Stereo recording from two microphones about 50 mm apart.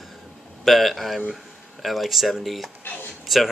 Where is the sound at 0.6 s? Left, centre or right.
Centre.